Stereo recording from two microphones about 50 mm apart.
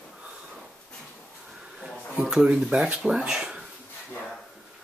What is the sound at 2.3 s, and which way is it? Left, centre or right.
Speech, centre.